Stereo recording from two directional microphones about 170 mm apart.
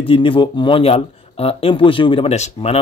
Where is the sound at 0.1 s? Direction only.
30° left (ahead or behind).